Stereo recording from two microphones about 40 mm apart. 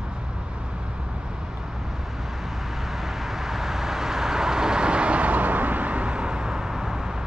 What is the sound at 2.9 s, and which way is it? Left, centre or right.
Vehicle, centre.